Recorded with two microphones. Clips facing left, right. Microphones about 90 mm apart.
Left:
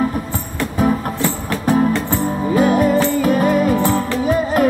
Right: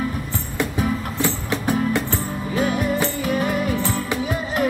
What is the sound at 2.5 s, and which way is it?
Music, 45° left (ahead or behind).